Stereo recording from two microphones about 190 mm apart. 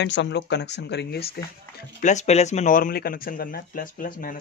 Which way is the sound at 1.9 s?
40° left (ahead or behind).